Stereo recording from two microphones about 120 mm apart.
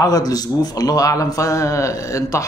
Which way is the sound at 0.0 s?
30° left (ahead or behind).